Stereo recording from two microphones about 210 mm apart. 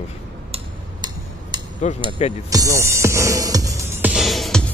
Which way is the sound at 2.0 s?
25° left (ahead or behind).